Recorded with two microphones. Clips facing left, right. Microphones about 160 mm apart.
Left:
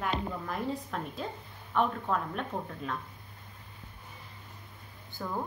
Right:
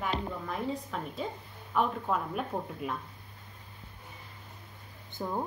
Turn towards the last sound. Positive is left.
turn(degrees=-20)  # may be behind; listen again after turning